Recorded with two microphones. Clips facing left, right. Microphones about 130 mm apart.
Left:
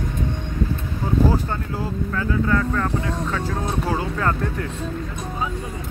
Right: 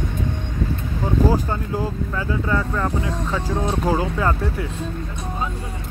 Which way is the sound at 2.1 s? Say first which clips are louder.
Left 3 dB; 15° right (ahead or behind).